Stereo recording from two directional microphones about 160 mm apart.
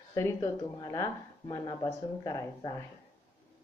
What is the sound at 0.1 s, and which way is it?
Speech, 20° left (ahead or behind).